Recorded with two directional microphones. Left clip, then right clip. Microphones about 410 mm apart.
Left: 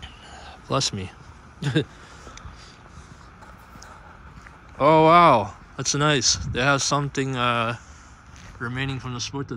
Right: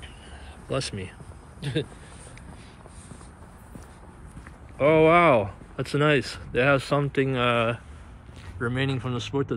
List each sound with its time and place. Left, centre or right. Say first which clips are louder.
0.7 s speech: left 5 dB; centre
4.7 s speech: left 3 dB; centre